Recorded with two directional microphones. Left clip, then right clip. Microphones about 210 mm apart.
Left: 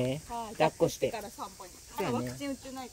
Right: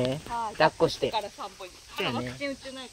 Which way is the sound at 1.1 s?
40° left (ahead or behind).